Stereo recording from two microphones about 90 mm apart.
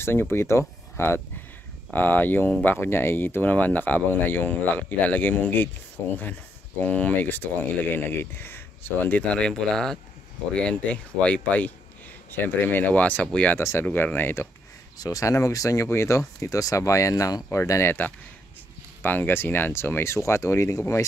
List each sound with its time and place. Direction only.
0.0 s speech: 25° left (ahead or behind)
6.8 s speech: 15° left (ahead or behind)
13.6 s speech: 30° left (ahead or behind)
13.8 s speech: 20° left (ahead or behind)
15.0 s speech: 40° left (ahead or behind)
19.0 s speech: 20° left (ahead or behind)